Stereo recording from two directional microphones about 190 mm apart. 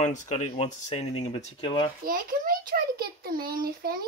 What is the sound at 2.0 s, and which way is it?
A child's voice, 50° right (ahead or behind).